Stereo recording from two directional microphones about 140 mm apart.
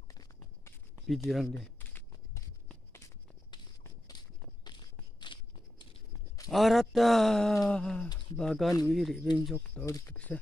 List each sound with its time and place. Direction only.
0.1 s writing: 25° left (ahead or behind)
1.0 s speech: centre (ahead or behind)
1.8 s a sound: 15° left (ahead or behind)
5.2 s crunch: 35° left (ahead or behind)
6.5 s speech: centre (ahead or behind)
9.8 s speech: 20° left (ahead or behind)
10.1 s speech: 10° left (ahead or behind)